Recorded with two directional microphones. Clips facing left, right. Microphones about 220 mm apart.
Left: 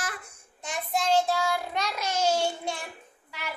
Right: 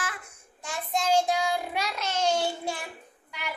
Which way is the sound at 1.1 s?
15° right (ahead or behind).